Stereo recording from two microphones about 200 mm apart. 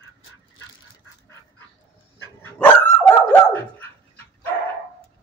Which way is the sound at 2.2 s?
10° left (ahead or behind).